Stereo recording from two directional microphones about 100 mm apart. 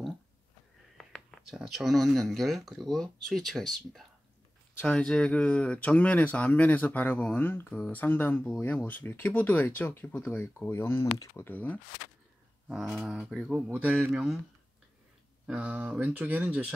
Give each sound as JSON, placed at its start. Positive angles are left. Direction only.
{"t": 0.9, "sound": "speech", "side_deg": 5}
{"t": 4.7, "sound": "speech", "side_deg": 10}
{"t": 13.0, "sound": "speech", "side_deg": 0}
{"t": 15.4, "sound": "speech", "side_deg": -15}